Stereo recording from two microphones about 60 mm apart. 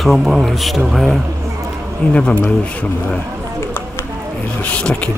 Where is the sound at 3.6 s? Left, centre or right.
Left.